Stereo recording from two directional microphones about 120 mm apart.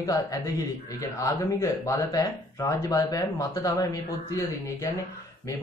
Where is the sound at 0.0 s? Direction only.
30° left (ahead or behind).